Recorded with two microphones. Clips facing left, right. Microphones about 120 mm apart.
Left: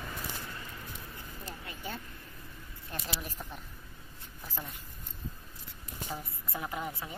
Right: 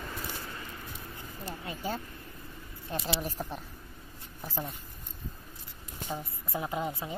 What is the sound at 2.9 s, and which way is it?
Speech, 30° right (ahead or behind).